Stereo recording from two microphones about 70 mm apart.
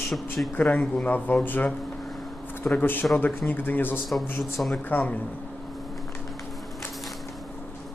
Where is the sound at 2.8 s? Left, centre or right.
Left.